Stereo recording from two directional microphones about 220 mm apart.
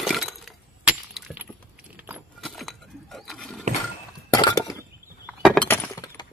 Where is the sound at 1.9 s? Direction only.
10° right (ahead or behind).